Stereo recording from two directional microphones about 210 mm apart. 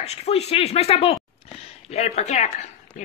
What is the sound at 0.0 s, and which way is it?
A child's voice, 30° left (ahead or behind).